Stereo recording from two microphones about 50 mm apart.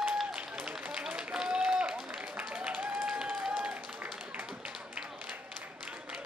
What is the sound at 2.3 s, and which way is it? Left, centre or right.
Applause, centre.